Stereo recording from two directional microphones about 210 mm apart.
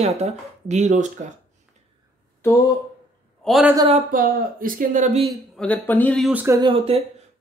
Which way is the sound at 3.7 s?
25° right (ahead or behind).